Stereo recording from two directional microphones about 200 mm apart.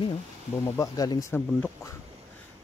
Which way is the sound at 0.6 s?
15° left (ahead or behind).